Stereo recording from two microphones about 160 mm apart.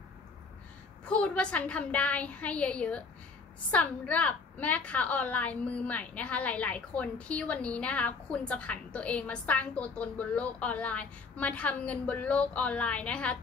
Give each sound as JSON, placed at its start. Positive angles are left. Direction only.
{"t": 1.0, "sound": "a woman's voice", "side_deg": 5}